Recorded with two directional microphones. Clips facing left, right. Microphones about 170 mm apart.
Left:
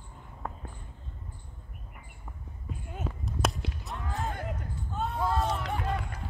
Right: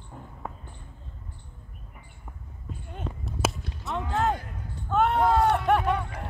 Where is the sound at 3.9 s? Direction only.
75° right (ahead or behind).